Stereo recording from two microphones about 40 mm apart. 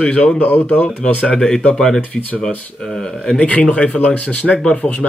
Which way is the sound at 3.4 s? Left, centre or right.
Left.